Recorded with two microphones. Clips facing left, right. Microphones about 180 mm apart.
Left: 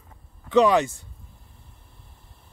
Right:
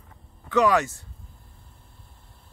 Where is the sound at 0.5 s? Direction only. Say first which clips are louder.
Left 3 dB; 20° left (ahead or behind).